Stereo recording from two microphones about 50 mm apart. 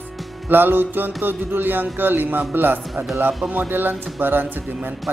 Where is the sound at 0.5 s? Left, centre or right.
Right.